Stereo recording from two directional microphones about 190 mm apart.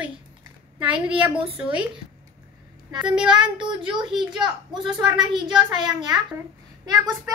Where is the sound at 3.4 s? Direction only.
25° right (ahead or behind).